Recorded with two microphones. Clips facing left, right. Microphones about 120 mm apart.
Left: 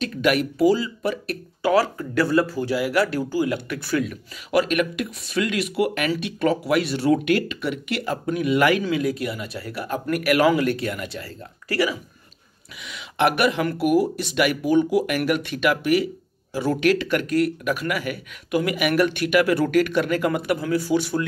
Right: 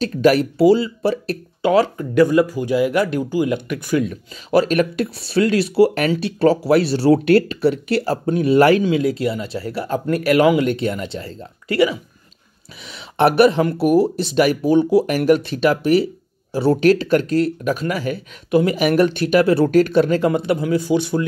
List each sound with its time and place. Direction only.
0.0 s speech: 35° right (ahead or behind); by 4.1 s 20° right (ahead or behind)
4.1 s speech: 30° right (ahead or behind)